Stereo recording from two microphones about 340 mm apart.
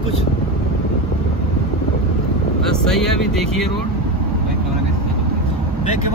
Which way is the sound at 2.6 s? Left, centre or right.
Centre.